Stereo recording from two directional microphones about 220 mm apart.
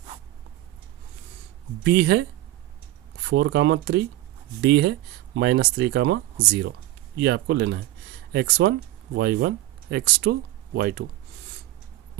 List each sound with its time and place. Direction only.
1.8 s speech: 50° right (ahead or behind)
3.3 s speech: 55° right (ahead or behind)